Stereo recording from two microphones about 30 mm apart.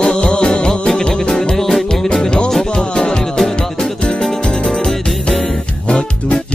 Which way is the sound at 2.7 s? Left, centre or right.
Left.